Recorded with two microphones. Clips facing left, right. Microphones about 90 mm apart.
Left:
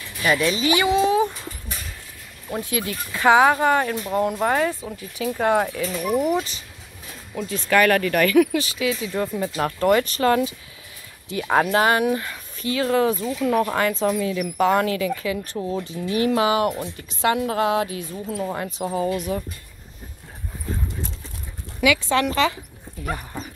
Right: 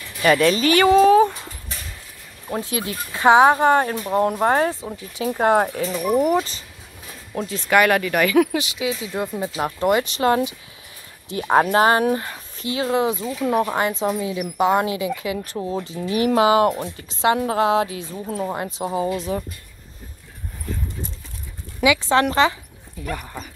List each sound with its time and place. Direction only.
0.2 s speech: 50° right (ahead or behind)
2.5 s speech: 25° right (ahead or behind)
4.7 s speech: 25° right (ahead or behind)
5.7 s speech: 45° right (ahead or behind)
7.4 s speech: 20° right (ahead or behind)
12.7 s speech: 20° right (ahead or behind)
21.8 s speech: 25° right (ahead or behind)